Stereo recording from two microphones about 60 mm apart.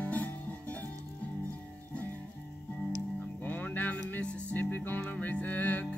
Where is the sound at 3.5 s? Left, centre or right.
Left.